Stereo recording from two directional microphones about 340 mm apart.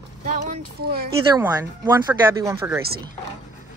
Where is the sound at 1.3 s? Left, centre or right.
Centre.